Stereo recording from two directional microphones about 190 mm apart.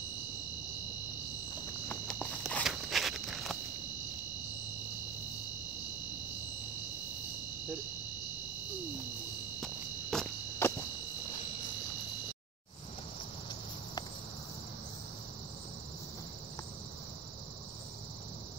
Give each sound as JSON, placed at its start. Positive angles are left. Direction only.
{"t": 1.9, "sound": "walk", "side_deg": 5}
{"t": 9.6, "sound": "walk", "side_deg": 0}